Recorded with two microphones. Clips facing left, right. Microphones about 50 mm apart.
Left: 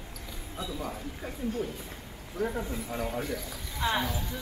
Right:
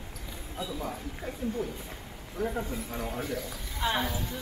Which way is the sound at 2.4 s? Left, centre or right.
Centre.